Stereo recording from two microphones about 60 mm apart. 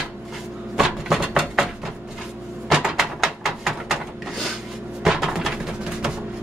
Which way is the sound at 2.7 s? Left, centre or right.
Centre.